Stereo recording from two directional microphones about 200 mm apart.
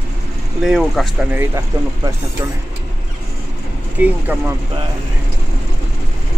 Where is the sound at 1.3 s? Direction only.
10° right (ahead or behind).